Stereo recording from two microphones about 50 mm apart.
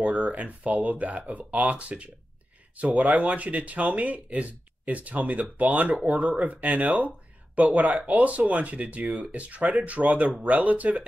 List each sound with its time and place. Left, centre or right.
0.0 s speech: right